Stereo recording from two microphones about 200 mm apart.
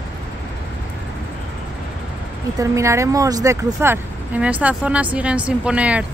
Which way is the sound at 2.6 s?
15° right (ahead or behind).